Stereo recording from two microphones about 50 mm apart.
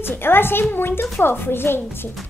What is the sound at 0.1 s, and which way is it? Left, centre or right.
A woman's voice, left.